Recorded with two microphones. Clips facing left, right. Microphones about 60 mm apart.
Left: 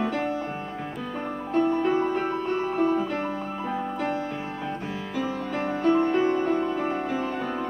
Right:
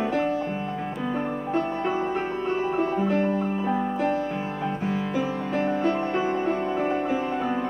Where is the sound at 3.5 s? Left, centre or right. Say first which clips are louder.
Right 5 dB; right.